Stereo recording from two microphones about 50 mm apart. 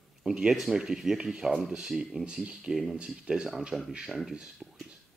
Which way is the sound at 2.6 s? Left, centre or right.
Centre.